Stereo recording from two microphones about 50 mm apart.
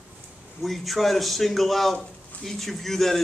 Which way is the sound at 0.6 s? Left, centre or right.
Centre.